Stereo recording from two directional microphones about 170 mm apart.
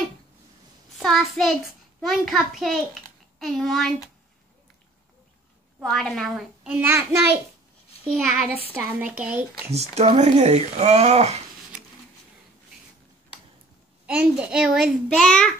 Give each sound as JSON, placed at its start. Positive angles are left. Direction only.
{"t": 0.9, "sound": "a child's voice", "side_deg": 0}
{"t": 5.8, "sound": "a child's voice", "side_deg": 5}
{"t": 8.6, "sound": "speech", "side_deg": -10}
{"t": 9.7, "sound": "speech", "side_deg": -40}
{"t": 14.0, "sound": "a child's voice", "side_deg": -5}